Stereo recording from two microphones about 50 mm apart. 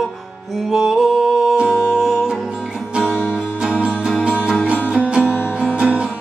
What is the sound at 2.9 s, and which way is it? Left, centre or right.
Music, centre.